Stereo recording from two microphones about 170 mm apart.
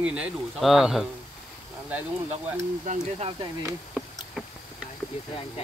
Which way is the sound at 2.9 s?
40° right (ahead or behind).